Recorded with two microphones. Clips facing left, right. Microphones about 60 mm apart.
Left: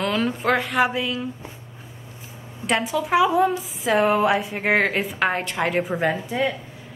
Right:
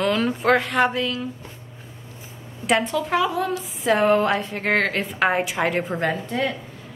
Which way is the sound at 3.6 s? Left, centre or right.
Centre.